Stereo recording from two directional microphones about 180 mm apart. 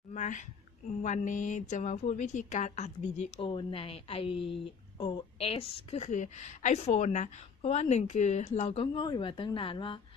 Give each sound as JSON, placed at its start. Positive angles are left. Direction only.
{"t": 0.1, "sound": "speech", "side_deg": 45}